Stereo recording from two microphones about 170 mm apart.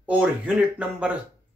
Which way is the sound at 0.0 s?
5° right (ahead or behind).